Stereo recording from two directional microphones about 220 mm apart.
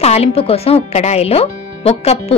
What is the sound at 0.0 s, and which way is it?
Speech, 30° left (ahead or behind).